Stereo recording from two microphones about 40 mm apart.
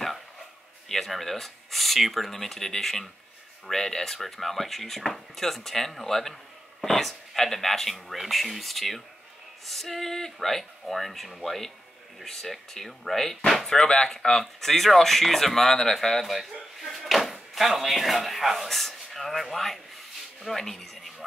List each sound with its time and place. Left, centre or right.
0.8 s speech: centre